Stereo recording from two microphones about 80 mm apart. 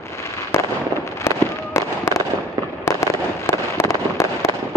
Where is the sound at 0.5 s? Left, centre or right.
Left.